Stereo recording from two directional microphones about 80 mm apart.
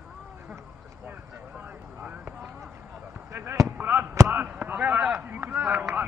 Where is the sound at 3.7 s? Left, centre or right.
Right.